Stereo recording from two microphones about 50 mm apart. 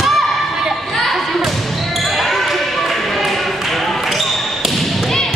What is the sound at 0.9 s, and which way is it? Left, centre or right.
Basketball bounce, centre.